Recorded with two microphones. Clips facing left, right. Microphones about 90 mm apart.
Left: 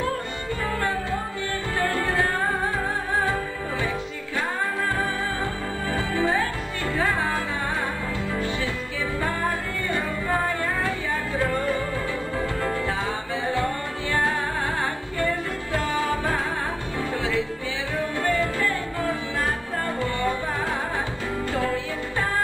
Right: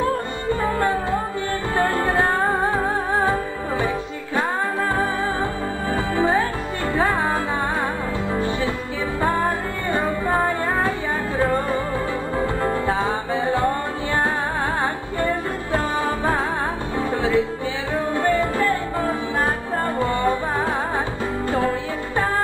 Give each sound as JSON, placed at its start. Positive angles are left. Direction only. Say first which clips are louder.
{"t": 0.7, "sound": "music", "louder": "right 4 dB", "side_deg": -25}
{"t": 4.9, "sound": "music", "louder": "right 4 dB", "side_deg": -25}
{"t": 9.2, "sound": "music", "louder": "right 7 dB", "side_deg": -20}
{"t": 18.1, "sound": "music", "louder": "right 5 dB", "side_deg": -25}
{"t": 21.5, "sound": "music", "louder": "right 5 dB", "side_deg": -25}